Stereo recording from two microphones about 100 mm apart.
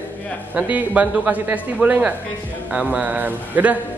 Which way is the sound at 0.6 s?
15° right (ahead or behind).